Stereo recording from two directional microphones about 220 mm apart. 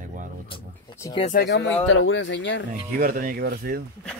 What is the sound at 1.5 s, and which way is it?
Speech, 60° left (ahead or behind).